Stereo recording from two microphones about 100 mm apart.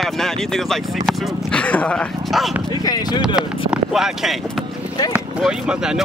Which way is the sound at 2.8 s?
40° left (ahead or behind).